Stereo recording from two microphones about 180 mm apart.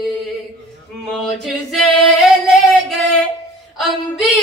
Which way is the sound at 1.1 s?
5° left (ahead or behind).